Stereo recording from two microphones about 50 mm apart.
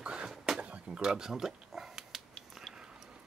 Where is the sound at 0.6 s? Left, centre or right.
Right; by 2.2 s centre.